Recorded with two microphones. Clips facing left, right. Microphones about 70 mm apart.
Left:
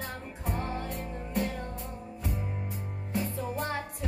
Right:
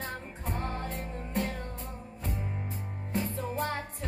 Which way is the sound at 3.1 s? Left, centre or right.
Centre.